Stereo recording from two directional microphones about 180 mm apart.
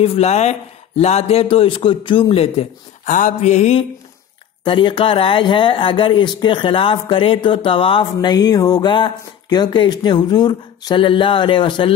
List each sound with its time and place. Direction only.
0.0 s speech: 35° left (ahead or behind)
3.1 s speech: 45° left (ahead or behind); by 11.9 s 25° left (ahead or behind)